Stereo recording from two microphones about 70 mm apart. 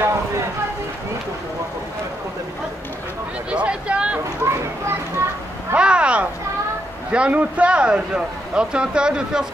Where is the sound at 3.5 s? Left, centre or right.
Centre.